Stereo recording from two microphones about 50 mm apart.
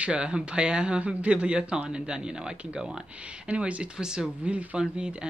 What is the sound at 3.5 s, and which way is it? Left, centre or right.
Speech, right.